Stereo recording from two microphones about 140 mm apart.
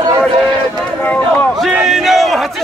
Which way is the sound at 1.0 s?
10° left (ahead or behind).